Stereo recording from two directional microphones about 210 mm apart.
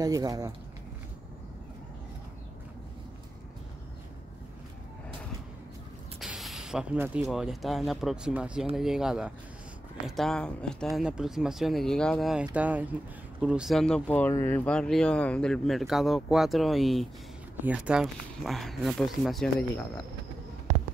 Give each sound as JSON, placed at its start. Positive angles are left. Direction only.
{"t": 0.0, "sound": "speech", "side_deg": -15}
{"t": 6.1, "sound": "mechanisms", "side_deg": 0}
{"t": 7.2, "sound": "speech", "side_deg": 0}